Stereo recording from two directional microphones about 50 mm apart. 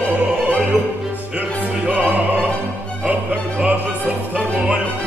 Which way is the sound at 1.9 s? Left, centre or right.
Right.